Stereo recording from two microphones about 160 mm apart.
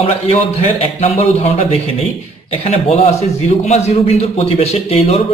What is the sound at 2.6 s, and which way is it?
A man's voice, 40° left (ahead or behind).